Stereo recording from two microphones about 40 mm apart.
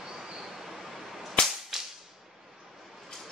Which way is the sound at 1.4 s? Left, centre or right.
Left.